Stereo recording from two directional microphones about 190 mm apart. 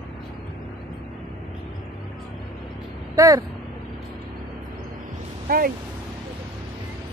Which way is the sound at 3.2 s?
15° right (ahead or behind).